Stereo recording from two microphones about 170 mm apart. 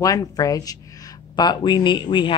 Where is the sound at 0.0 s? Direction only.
20° left (ahead or behind).